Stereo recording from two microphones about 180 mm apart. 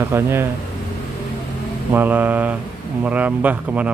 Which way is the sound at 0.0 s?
15° right (ahead or behind).